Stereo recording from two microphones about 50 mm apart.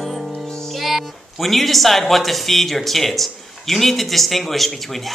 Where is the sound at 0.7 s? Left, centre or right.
Centre.